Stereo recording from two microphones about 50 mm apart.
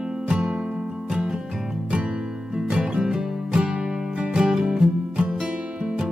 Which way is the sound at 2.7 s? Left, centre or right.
Centre.